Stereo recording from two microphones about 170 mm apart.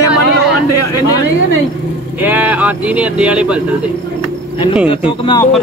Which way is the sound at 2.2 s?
10° right (ahead or behind).